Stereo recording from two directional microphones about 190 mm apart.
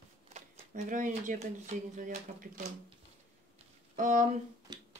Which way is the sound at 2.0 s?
40° right (ahead or behind).